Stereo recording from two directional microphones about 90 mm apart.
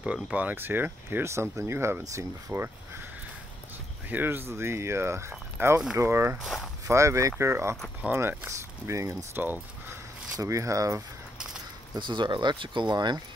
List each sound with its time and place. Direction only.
0.0 s speech: 15° right (ahead or behind)
4.1 s speech: 25° right (ahead or behind)
6.3 s speech: 5° right (ahead or behind)
6.9 s speech: 35° right (ahead or behind)
9.3 s speech: 20° right (ahead or behind)
10.3 s speech: 40° right (ahead or behind)
11.9 s speech: 60° right (ahead or behind)